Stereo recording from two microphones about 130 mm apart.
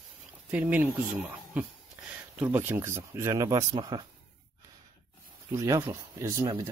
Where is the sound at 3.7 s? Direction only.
35° right (ahead or behind).